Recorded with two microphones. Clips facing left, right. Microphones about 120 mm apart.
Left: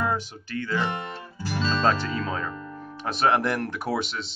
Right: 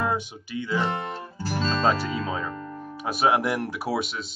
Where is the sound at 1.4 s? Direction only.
35° right (ahead or behind).